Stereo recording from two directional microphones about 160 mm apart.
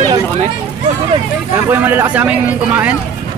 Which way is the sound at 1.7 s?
10° right (ahead or behind).